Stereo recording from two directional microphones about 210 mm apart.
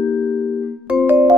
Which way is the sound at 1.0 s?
10° right (ahead or behind).